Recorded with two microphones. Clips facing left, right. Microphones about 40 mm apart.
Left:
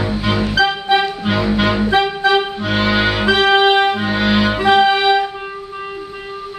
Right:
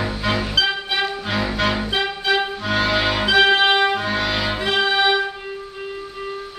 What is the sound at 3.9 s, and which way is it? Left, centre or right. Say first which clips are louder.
Music: left 5 dB; centre.